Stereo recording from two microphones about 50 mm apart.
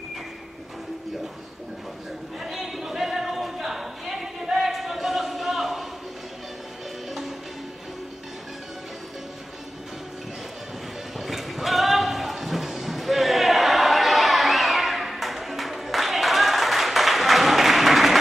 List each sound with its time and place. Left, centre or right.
2.4 s a sound: centre
7.1 s music: centre
11.1 s clip-clop: centre